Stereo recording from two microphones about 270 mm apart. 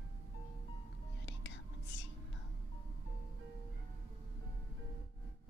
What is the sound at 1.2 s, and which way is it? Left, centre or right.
Whispering, left.